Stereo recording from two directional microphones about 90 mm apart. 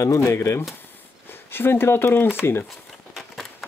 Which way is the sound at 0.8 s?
25° left (ahead or behind).